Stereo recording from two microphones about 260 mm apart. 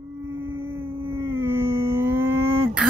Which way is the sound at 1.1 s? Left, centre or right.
Centre.